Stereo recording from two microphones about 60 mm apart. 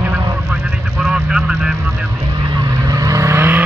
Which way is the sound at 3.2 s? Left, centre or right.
Right.